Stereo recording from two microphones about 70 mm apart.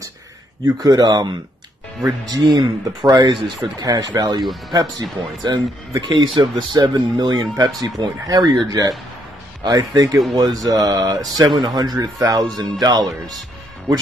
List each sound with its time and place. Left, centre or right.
0.7 s speech: right
2.3 s speech: right